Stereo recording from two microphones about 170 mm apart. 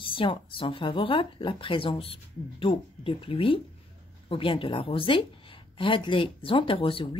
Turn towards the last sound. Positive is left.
turn(degrees=30)  # may be behind; listen again after turning